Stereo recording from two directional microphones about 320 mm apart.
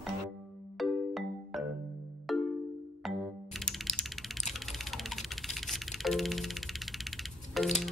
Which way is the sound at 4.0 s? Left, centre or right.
Centre.